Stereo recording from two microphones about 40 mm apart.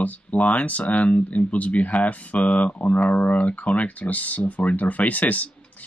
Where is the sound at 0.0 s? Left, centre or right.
Left.